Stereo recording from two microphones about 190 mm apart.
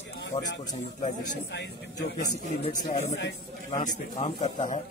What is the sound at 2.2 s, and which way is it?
A man's voice, 35° left (ahead or behind).